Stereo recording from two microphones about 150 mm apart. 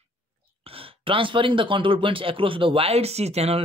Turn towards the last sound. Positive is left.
turn(degrees=-45)  # may be behind; listen again after turning